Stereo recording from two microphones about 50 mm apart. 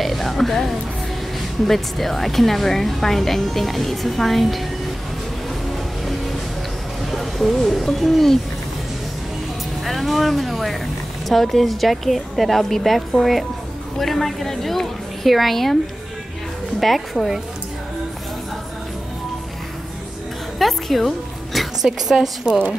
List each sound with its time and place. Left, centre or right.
0.0 s music: centre
1.7 s a woman's voice: centre
7.1 s speech: centre
9.8 s a woman's voice: centre
16.8 s a woman's voice: centre
20.5 s a woman's voice: centre